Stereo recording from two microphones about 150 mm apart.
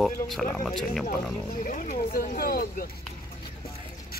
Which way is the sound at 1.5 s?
65° left (ahead or behind).